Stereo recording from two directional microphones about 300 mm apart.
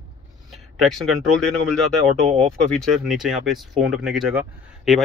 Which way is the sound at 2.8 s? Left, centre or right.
Centre.